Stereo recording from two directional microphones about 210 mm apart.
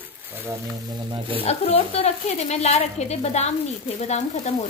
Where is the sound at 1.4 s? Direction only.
30° left (ahead or behind).